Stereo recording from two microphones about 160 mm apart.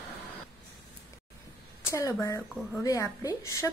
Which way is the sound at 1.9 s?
20° left (ahead or behind).